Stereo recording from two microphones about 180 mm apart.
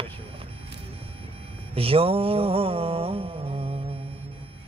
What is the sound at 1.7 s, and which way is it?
Music, 30° right (ahead or behind).